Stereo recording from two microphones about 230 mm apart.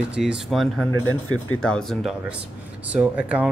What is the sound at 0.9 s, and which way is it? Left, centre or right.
Speech, left.